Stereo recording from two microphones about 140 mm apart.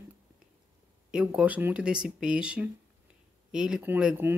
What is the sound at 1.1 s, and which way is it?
Speech, 10° right (ahead or behind).